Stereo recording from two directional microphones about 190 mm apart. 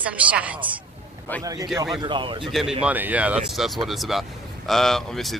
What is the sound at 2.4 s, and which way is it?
Speech, centre (ahead or behind).